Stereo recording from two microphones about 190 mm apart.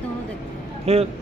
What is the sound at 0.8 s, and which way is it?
Speech, 30° right (ahead or behind).